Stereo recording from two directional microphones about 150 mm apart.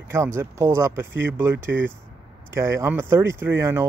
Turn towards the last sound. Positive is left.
turn(degrees=-15)  # may be behind; listen again after turning